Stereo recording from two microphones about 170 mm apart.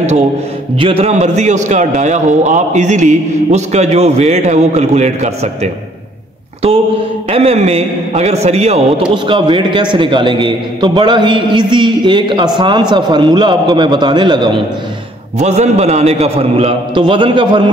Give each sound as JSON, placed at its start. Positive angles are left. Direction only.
{"t": 0.7, "sound": "a man's voice", "side_deg": -35}
{"t": 7.2, "sound": "a man's voice", "side_deg": -35}
{"t": 9.1, "sound": "a man's voice", "side_deg": -30}
{"t": 15.3, "sound": "a man's voice", "side_deg": -40}